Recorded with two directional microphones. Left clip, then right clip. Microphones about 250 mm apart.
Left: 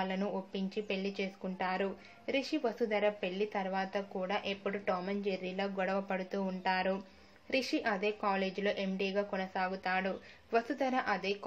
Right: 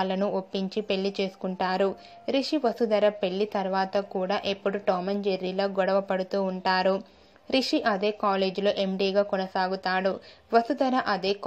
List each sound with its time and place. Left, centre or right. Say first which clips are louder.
0.0 s speech: right 9 dB; right